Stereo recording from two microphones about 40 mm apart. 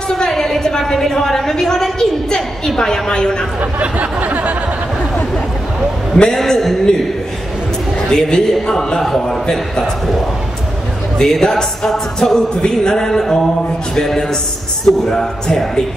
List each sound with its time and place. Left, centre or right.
0.3 s a woman's voice: centre
3.8 s a sound: right
6.2 s a woman's voice: centre
8.1 s a woman's voice: centre
11.1 s a woman's voice: centre